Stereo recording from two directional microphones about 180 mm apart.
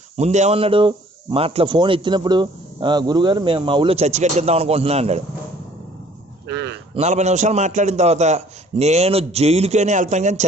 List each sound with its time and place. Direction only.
0.2 s speech: 40° right (ahead or behind)
6.4 s a sound: 75° right (ahead or behind)
7.0 s a man's voice: 40° right (ahead or behind)